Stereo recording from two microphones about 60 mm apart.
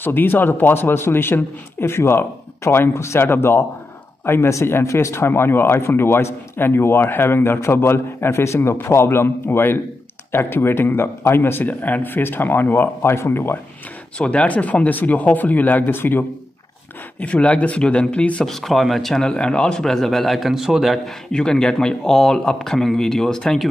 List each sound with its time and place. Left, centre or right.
0.0 s a man's voice: left
4.5 s a man's voice: left
11.6 s a man's voice: left
14.1 s speech: centre; by 16.3 s left
17.2 s speech: centre
18.4 s speech: centre
21.3 s speech: centre